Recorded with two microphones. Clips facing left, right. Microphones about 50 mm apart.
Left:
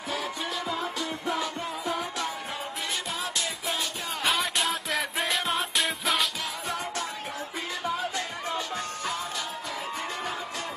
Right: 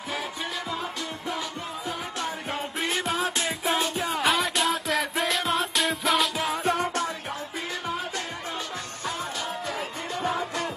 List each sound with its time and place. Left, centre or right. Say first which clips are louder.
0.7 s music: left 1 dB; centre
2.8 s music: right 7 dB; right
4.0 s music: even; centre
6.6 s music: right 6 dB; right